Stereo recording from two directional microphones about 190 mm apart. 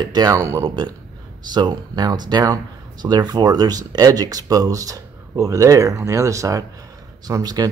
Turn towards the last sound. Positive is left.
turn(degrees=-20)  # may be behind; listen again after turning